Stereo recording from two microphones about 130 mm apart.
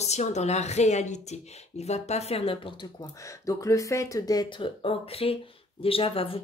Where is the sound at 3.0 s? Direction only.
25° left (ahead or behind); by 6.4 s 45° left (ahead or behind).